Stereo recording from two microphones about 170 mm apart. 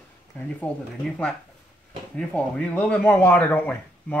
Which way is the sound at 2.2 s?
5° left (ahead or behind).